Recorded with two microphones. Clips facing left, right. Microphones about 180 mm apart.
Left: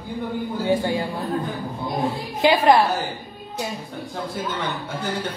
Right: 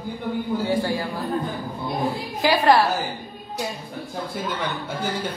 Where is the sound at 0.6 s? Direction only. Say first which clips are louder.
Left 5 dB; 20° left (ahead or behind).